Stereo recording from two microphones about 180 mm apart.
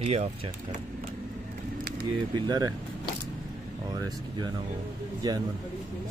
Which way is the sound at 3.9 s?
20° right (ahead or behind).